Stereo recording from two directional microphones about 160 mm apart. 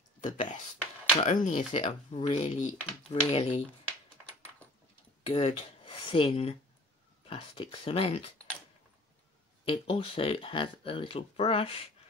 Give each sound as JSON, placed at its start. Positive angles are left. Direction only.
{"t": 0.2, "sound": "speech", "side_deg": 50}
{"t": 5.2, "sound": "speech", "side_deg": 40}
{"t": 9.7, "sound": "speech", "side_deg": 35}